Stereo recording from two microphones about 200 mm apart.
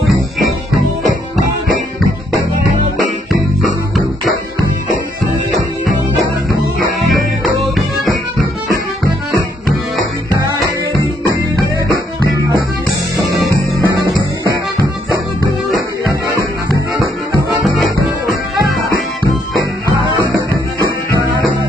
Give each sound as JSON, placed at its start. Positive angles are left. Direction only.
{"t": 3.6, "sound": "music", "side_deg": 0}
{"t": 13.3, "sound": "music", "side_deg": 0}
{"t": 17.6, "sound": "music", "side_deg": 0}